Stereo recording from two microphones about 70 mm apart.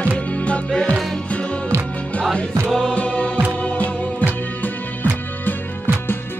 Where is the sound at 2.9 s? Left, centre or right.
Centre.